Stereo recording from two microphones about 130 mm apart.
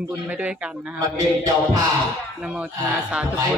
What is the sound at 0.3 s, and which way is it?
Speech, 10° right (ahead or behind).